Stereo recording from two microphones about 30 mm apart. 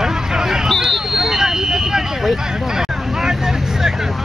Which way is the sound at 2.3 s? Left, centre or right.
Centre.